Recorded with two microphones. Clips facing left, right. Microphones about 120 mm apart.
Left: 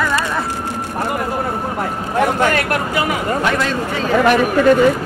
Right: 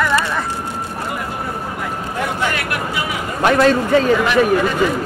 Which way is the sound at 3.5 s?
45° right (ahead or behind).